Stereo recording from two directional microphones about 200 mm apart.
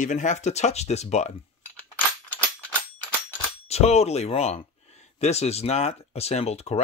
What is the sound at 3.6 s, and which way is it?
Speech, 30° left (ahead or behind).